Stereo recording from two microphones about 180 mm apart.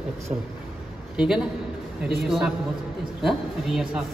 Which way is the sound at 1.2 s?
5° right (ahead or behind).